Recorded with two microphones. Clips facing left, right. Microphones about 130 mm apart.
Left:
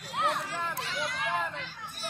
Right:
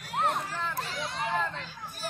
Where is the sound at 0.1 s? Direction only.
40° right (ahead or behind).